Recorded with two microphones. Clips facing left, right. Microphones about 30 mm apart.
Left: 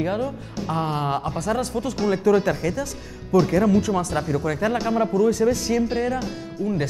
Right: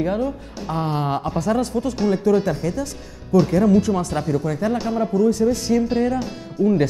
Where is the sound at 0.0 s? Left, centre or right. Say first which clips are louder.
Right 3 dB; centre.